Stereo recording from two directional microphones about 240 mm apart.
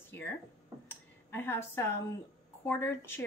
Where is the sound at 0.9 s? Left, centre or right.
Centre.